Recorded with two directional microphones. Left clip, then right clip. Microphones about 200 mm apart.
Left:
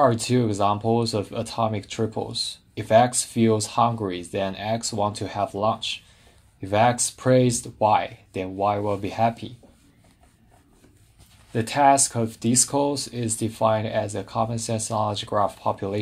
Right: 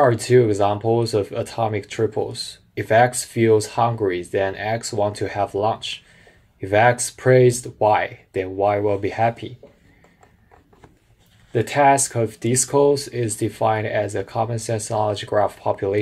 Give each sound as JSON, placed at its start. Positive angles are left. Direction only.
{"t": 0.0, "sound": "speech", "side_deg": 35}
{"t": 3.4, "sound": "speech", "side_deg": 35}
{"t": 6.8, "sound": "speech", "side_deg": 35}
{"t": 11.5, "sound": "speech", "side_deg": 40}